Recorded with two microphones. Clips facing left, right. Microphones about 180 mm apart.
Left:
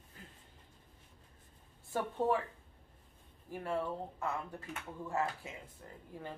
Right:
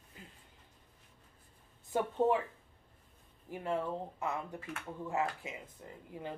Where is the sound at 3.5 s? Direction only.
15° right (ahead or behind).